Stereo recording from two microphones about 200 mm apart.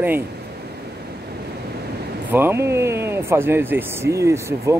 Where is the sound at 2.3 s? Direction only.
10° right (ahead or behind).